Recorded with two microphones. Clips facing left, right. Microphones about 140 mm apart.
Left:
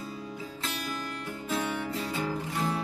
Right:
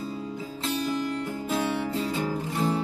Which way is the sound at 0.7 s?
25° right (ahead or behind).